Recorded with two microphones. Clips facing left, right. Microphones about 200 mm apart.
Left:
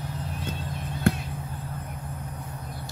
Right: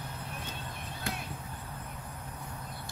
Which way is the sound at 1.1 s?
55° left (ahead or behind).